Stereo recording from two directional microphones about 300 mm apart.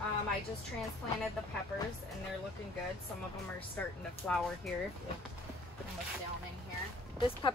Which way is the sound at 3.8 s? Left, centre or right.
Centre.